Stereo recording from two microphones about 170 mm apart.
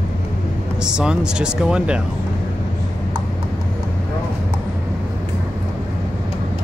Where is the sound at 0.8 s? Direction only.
5° right (ahead or behind).